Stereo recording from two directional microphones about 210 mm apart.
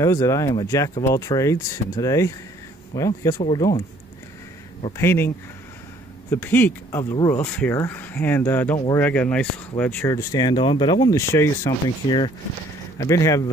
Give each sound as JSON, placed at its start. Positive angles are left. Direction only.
{"t": 0.0, "sound": "speech", "side_deg": 15}
{"t": 4.9, "sound": "speech", "side_deg": 10}
{"t": 6.3, "sound": "speech", "side_deg": 10}